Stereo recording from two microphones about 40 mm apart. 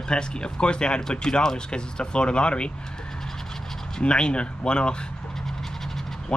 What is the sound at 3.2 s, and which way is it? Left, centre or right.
Scratch, centre.